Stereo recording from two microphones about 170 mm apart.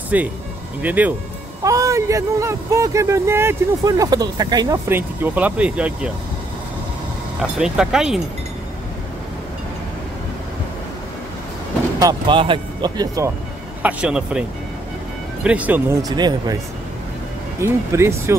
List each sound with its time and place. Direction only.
0.1 s speech: 10° right (ahead or behind)
7.5 s speech: 5° right (ahead or behind)
12.0 s speech: 25° right (ahead or behind)
13.8 s speech: 5° right (ahead or behind)
15.4 s speech: 10° right (ahead or behind)
16.0 s speech: 25° right (ahead or behind)
17.6 s speech: 15° right (ahead or behind)